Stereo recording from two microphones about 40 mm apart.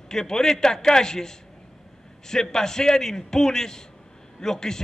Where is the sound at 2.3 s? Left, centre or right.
Centre.